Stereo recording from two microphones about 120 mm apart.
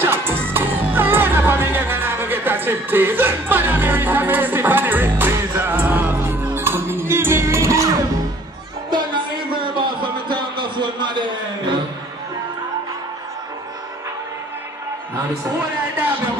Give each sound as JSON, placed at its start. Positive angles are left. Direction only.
{"t": 0.0, "sound": "crowd", "side_deg": -20}
{"t": 0.5, "sound": "music", "side_deg": -15}
{"t": 8.9, "sound": "a sound", "side_deg": -40}